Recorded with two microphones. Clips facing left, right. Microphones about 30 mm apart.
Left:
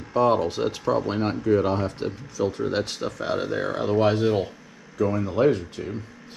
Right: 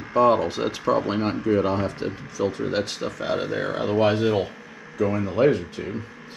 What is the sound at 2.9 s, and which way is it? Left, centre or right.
Speech, centre.